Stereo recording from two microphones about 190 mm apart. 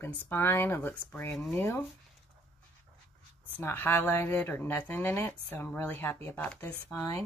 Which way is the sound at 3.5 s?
10° left (ahead or behind).